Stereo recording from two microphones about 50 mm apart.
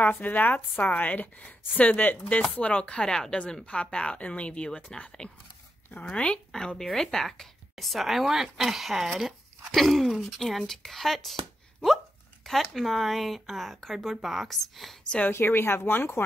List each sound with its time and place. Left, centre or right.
0.0 s a woman's voice: left; by 11.3 s centre
12.7 s speech: centre
15.2 s speech: left